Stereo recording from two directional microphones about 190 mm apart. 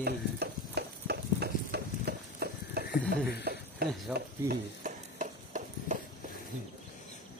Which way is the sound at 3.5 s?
55° right (ahead or behind).